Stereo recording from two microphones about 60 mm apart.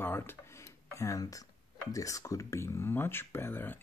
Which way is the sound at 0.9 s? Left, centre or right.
Left.